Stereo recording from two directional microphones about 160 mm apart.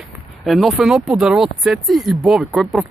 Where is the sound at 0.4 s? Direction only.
Centre (ahead or behind).